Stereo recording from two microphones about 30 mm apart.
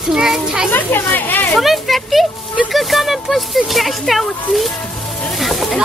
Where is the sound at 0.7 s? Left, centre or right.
Left.